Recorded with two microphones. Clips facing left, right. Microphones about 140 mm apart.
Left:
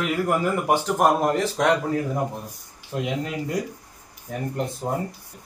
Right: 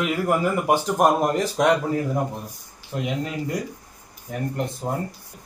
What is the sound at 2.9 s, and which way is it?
Speech, 5° left (ahead or behind).